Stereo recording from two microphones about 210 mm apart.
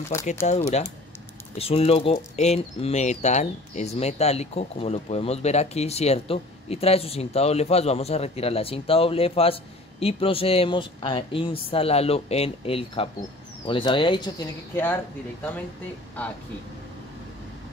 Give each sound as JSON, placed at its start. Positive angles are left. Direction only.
{"t": 0.1, "sound": "speech", "side_deg": 15}
{"t": 0.5, "sound": "speech", "side_deg": 30}